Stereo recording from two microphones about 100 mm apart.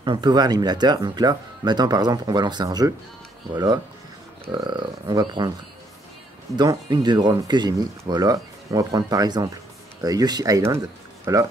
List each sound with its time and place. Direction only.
0.0 s speech: 50° right (ahead or behind)
6.5 s speech: 45° right (ahead or behind)